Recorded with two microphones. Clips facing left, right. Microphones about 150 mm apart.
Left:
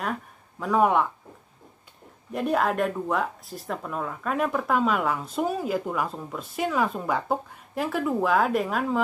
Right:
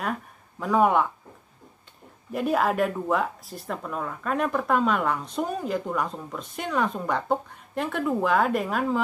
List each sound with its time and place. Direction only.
0.6 s speech: centre (ahead or behind)
2.3 s speech: centre (ahead or behind)